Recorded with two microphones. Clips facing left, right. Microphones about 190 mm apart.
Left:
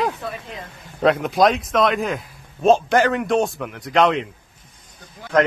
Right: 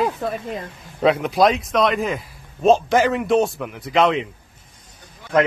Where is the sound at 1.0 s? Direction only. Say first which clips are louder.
Even; centre (ahead or behind).